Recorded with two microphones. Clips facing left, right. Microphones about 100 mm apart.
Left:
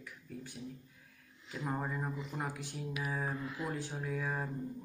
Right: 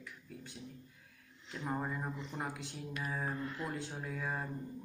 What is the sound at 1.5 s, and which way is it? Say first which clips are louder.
Speech: even; centre (ahead or behind).